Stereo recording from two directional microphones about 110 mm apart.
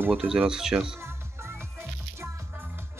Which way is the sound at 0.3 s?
5° right (ahead or behind).